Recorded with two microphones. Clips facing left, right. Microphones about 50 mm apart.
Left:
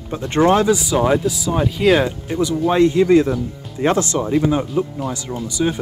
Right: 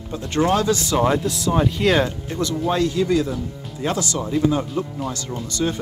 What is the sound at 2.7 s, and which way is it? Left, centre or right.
Speech, left.